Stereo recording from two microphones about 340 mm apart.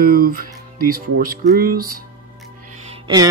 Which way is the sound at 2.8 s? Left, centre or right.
Centre.